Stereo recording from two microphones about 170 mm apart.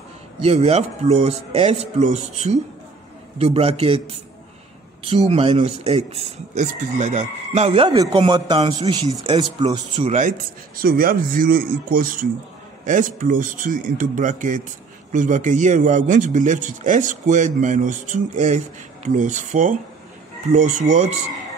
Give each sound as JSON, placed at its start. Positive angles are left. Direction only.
{"t": 0.4, "sound": "speech", "side_deg": -40}
{"t": 5.3, "sound": "a man's voice", "side_deg": -40}
{"t": 10.2, "sound": "a man's voice", "side_deg": -55}